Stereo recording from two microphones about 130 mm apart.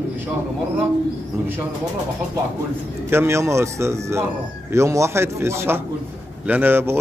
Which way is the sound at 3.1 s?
20° right (ahead or behind).